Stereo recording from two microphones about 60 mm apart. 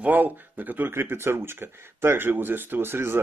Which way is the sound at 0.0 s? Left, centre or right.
Right.